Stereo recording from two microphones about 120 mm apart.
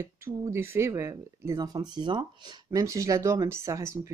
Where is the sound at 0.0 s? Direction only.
20° right (ahead or behind).